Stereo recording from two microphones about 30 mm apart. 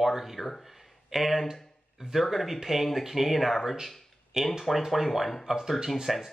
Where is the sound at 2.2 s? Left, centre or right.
Centre.